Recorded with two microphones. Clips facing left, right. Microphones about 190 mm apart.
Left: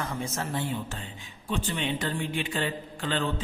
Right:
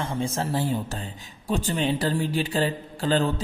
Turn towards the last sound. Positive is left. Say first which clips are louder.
# right 6 dB
turn(degrees=-40)  # may be behind; listen again after turning